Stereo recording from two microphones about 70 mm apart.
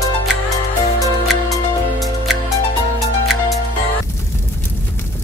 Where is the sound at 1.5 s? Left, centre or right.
Centre.